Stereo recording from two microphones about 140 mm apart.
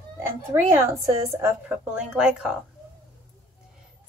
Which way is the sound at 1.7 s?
5° right (ahead or behind).